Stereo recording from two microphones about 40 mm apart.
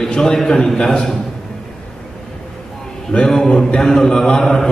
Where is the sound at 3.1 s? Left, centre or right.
Centre.